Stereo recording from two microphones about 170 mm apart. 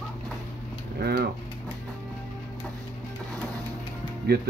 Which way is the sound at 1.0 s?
65° right (ahead or behind).